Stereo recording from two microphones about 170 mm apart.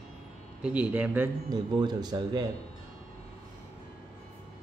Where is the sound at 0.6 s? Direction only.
5° right (ahead or behind).